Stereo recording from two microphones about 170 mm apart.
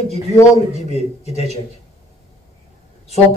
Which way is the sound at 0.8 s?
35° left (ahead or behind).